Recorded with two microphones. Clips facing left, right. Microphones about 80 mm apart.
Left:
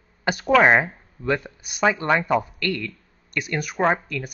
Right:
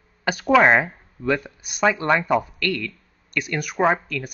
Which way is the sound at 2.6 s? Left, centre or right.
Centre.